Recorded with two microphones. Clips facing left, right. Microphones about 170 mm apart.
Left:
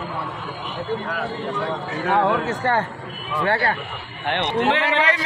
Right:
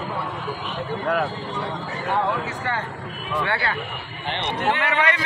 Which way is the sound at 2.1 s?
45° left (ahead or behind).